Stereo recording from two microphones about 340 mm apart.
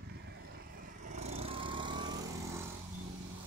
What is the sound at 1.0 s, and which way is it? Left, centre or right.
Vehicle, centre.